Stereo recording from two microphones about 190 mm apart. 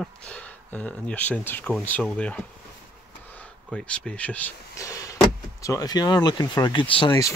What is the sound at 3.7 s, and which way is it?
Speech, 5° left (ahead or behind).